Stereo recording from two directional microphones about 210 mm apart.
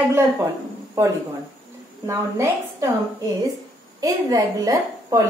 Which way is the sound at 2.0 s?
15° right (ahead or behind).